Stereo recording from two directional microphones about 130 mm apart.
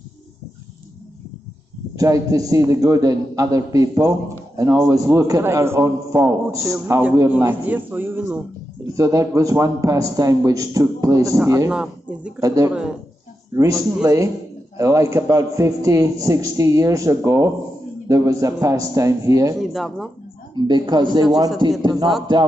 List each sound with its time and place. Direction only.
2.0 s a man's voice: 25° right (ahead or behind)
8.9 s a man's voice: 25° right (ahead or behind)
11.7 s speech: 5° right (ahead or behind)
12.4 s a man's voice: 25° right (ahead or behind)
19.6 s speech: centre (ahead or behind)
20.5 s a man's voice: 35° right (ahead or behind)